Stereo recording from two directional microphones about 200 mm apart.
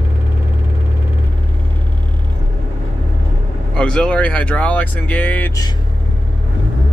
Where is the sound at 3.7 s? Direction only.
5° left (ahead or behind).